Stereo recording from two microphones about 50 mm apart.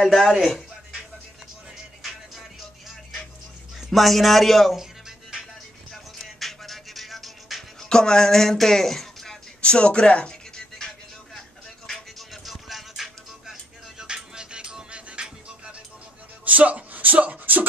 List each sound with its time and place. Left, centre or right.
0.3 s speech: centre
2.0 s music: centre
3.9 s speech: centre
6.1 s music: centre
7.9 s music: centre
9.6 s music: left
11.9 s music: centre; by 15.7 s right
16.4 s a sound: right